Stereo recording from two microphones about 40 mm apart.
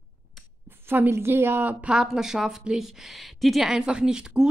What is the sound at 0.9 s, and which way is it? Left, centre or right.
Speech, right.